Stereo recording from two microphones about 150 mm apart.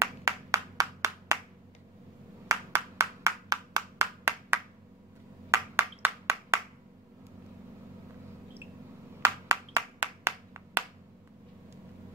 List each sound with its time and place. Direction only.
0.0 s clapping: 20° right (ahead or behind)
2.4 s clapping: 20° right (ahead or behind)
9.2 s clapping: 20° right (ahead or behind)